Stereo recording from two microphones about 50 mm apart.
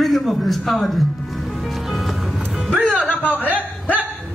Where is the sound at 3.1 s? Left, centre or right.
Left.